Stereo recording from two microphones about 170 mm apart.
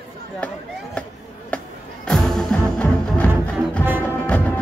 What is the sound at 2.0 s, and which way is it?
Music, 5° left (ahead or behind).